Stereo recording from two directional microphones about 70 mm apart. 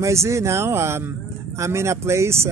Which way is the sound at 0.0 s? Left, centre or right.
Right.